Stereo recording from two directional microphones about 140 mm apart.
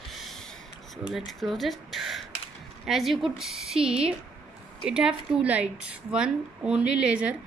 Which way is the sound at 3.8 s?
40° right (ahead or behind).